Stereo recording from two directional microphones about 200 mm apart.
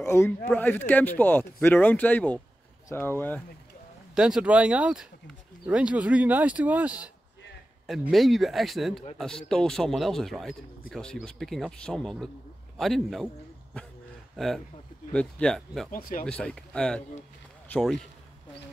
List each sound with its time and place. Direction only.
0.0 s speech: 15° left (ahead or behind)
4.1 s speech: 5° right (ahead or behind)
14.3 s speech: centre (ahead or behind)
15.9 s speech: 45° left (ahead or behind)
16.3 s speech: 5° left (ahead or behind)